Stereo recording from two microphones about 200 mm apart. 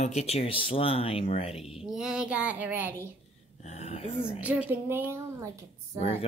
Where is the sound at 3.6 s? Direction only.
30° left (ahead or behind).